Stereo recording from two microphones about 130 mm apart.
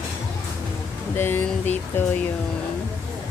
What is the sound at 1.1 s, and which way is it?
Speech, 15° left (ahead or behind).